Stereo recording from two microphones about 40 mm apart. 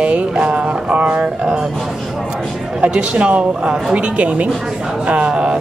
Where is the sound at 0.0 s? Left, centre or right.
Right.